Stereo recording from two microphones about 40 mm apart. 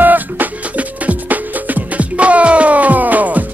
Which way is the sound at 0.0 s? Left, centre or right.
Right.